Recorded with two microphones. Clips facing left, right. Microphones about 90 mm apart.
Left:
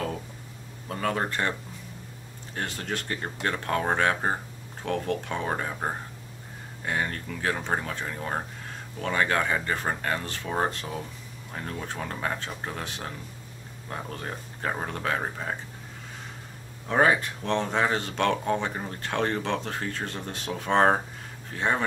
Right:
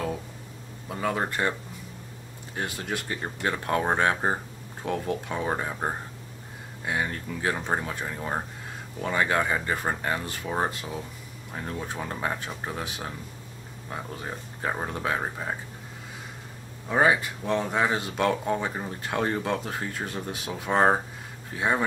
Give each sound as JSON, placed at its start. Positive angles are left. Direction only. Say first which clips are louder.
{"t": 0.8, "sound": "speech", "louder": "even", "side_deg": -10}
{"t": 2.5, "sound": "speech", "louder": "right 1 dB", "side_deg": -10}
{"t": 11.5, "sound": "speech", "louder": "right 1 dB", "side_deg": -15}
{"t": 16.8, "sound": "speech", "louder": "even", "side_deg": -5}